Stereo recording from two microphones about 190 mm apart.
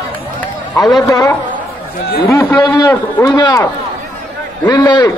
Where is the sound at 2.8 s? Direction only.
15° left (ahead or behind).